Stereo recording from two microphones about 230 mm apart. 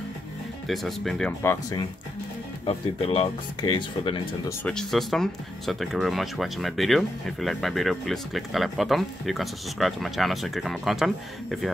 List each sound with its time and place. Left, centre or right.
0.7 s speech: centre
1.4 s speech: centre
2.6 s speech: left
4.5 s speech: centre